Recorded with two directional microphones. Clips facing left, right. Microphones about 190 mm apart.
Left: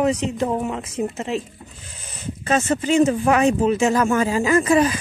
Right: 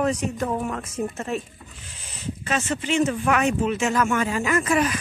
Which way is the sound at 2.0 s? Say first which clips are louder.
Left 1 dB; 45° left (ahead or behind).